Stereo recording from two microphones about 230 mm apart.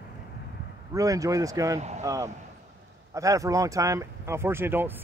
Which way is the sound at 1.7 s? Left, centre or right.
Right.